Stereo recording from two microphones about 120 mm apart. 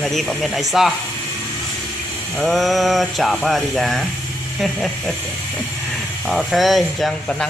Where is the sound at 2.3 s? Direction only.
Centre (ahead or behind).